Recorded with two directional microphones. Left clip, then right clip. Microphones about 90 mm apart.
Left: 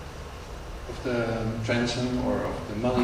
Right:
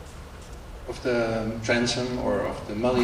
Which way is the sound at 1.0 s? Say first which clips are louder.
Right 3 dB; 30° right (ahead or behind).